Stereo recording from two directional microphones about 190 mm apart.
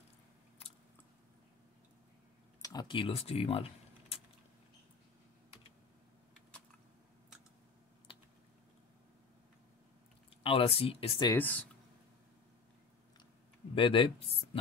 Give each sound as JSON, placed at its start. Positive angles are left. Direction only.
{"t": 2.6, "sound": "speech", "side_deg": 20}
{"t": 8.1, "sound": "typing", "side_deg": 30}
{"t": 10.4, "sound": "speech", "side_deg": 30}
{"t": 11.3, "sound": "speech", "side_deg": 10}
{"t": 13.7, "sound": "speech", "side_deg": 25}